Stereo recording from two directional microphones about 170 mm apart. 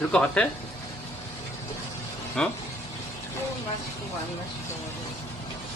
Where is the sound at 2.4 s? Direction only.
5° left (ahead or behind).